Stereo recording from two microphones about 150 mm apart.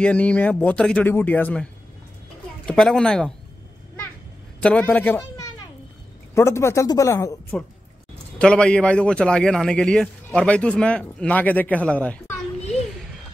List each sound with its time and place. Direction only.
0.0 s a man's voice: 10° left (ahead or behind)
4.6 s a man's voice: 10° left (ahead or behind)
6.3 s speech: 20° left (ahead or behind)
8.4 s a man's voice: 5° left (ahead or behind)